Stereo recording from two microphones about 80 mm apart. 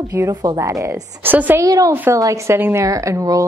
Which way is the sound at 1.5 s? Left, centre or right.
Right.